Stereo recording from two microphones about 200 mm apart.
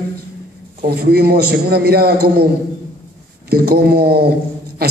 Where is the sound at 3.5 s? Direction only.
50° right (ahead or behind).